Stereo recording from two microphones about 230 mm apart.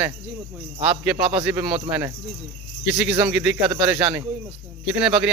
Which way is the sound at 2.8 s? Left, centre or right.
Centre.